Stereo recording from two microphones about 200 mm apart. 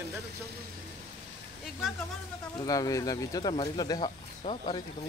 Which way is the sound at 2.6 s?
15° left (ahead or behind).